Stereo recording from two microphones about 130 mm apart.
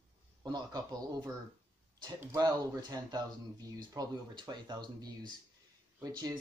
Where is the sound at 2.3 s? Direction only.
30° right (ahead or behind).